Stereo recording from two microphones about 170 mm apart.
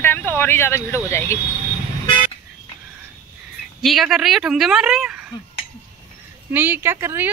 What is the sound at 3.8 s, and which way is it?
A woman's voice, centre (ahead or behind).